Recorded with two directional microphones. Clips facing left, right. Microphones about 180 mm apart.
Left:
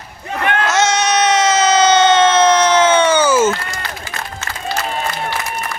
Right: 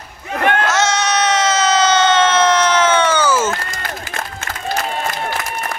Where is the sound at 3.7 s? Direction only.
50° right (ahead or behind).